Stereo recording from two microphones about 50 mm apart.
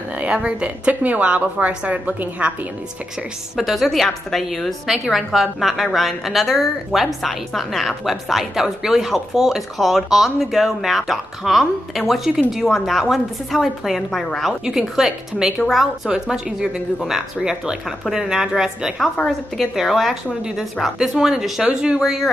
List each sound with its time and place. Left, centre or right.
0.2 s a woman's voice: right
3.5 s a woman's voice: centre
19.2 s a woman's voice: centre